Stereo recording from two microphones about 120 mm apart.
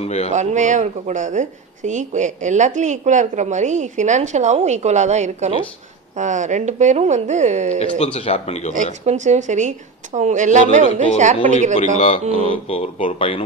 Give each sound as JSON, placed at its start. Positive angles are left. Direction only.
{"t": 0.0, "sound": "speech", "side_deg": 60}
{"t": 0.3, "sound": "speech", "side_deg": -80}
{"t": 6.1, "sound": "speech", "side_deg": -90}
{"t": 8.0, "sound": "speech", "side_deg": 60}
{"t": 9.0, "sound": "speech", "side_deg": -80}
{"t": 12.0, "sound": "speech", "side_deg": 50}